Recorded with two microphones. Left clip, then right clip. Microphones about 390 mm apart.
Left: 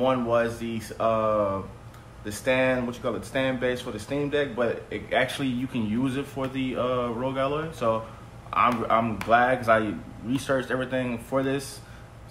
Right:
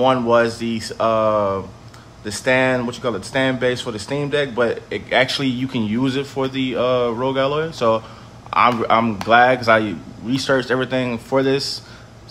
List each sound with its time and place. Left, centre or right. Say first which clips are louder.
0.0 s speech: right 8 dB; right